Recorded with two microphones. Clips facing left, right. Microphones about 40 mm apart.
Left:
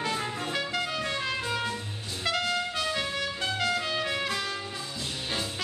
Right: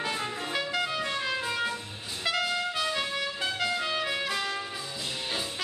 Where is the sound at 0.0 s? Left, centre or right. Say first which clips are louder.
Left 1 dB; centre.